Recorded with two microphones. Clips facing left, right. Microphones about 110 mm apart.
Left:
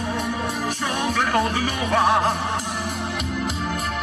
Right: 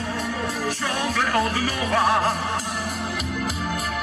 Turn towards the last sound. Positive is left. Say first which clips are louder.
# left 1 dB
turn(degrees=-5)  # may be behind; listen again after turning